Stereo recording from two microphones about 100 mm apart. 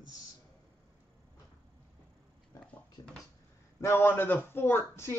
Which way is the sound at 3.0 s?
35° left (ahead or behind).